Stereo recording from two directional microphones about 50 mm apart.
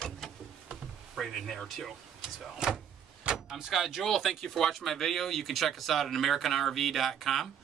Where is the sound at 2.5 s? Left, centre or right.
Centre.